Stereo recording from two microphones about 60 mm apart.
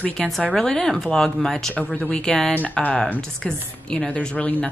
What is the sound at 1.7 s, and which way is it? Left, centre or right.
A woman's voice, centre.